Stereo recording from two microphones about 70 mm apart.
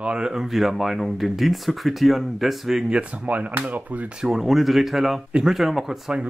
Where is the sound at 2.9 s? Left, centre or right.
Centre.